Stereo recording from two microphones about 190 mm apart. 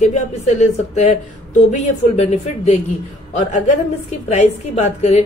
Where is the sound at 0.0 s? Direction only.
35° left (ahead or behind).